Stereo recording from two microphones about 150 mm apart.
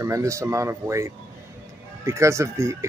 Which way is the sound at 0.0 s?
20° right (ahead or behind).